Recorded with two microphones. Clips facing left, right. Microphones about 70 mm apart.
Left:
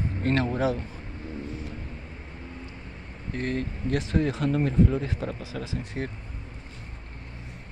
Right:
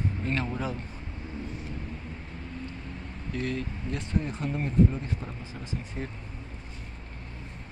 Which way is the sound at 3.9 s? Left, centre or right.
Left.